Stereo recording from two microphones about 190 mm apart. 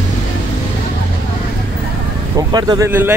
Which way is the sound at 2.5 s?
20° right (ahead or behind).